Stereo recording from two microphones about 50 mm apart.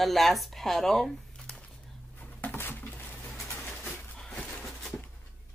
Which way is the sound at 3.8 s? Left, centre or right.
Centre.